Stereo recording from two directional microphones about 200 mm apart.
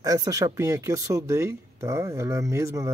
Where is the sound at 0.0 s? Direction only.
20° right (ahead or behind).